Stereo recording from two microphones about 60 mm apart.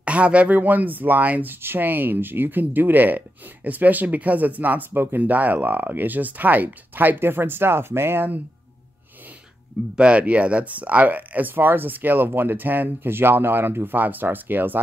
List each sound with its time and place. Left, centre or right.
0.0 s speech: right
9.9 s speech: centre